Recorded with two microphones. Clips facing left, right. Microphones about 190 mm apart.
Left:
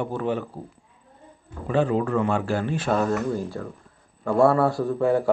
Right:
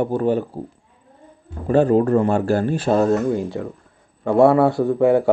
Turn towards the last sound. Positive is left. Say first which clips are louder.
# right 6 dB
turn(degrees=-25)  # may be behind; listen again after turning